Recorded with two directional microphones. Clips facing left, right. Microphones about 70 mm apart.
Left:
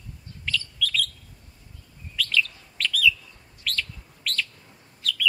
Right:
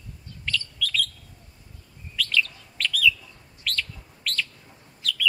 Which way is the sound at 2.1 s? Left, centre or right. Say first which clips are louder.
Even; centre.